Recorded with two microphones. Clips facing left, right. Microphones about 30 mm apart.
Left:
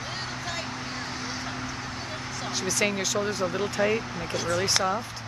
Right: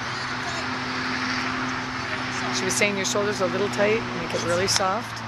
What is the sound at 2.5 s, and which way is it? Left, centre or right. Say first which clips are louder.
Speech: right 2 dB; centre.